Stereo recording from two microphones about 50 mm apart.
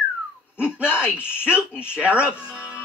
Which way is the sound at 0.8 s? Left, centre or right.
Right.